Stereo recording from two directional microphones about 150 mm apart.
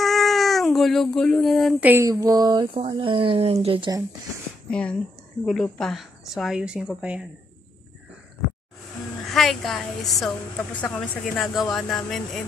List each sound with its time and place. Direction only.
0.0 s cat: centre (ahead or behind)
1.9 s a sound: 15° right (ahead or behind)
2.1 s speech: 25° right (ahead or behind)
4.6 s a woman's voice: 5° left (ahead or behind)
9.3 s a woman's voice: centre (ahead or behind)